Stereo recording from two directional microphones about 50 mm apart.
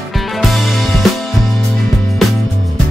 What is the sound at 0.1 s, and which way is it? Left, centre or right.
Music, centre.